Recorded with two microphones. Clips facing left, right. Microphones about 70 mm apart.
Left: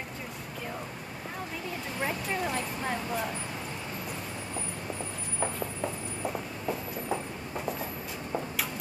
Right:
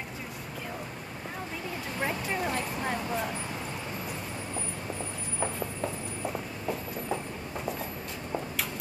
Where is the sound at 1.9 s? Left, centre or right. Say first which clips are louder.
Right 1 dB; centre.